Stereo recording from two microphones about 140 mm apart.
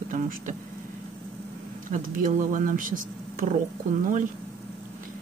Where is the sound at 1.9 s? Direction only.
70° right (ahead or behind).